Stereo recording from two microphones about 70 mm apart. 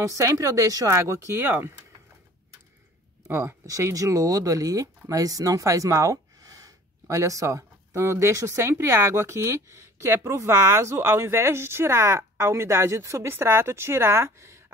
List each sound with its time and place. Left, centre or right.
0.0 s speech: right
0.9 s speech: right
3.3 s speech: right
3.6 s speech: right
7.2 s speech: right